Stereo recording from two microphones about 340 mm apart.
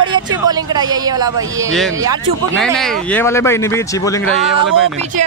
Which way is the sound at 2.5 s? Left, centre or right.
Centre.